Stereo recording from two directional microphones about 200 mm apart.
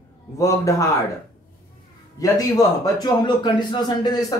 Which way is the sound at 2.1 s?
20° left (ahead or behind).